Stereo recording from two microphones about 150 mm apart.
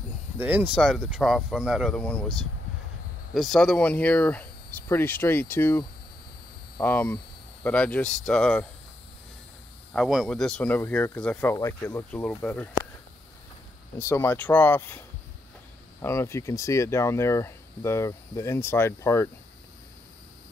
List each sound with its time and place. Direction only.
0.4 s speech: 10° right (ahead or behind)
0.7 s speech: centre (ahead or behind)
3.3 s speech: centre (ahead or behind)
6.8 s speech: 15° left (ahead or behind)
9.9 s speech: centre (ahead or behind)
13.9 s speech: 15° left (ahead or behind)